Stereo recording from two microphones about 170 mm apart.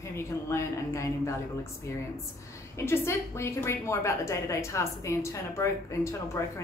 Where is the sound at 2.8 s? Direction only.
15° left (ahead or behind).